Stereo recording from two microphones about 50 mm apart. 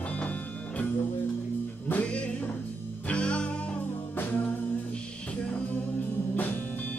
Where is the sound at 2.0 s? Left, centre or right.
Centre.